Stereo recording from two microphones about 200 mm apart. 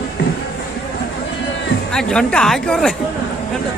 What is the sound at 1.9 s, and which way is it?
Speech, 5° left (ahead or behind).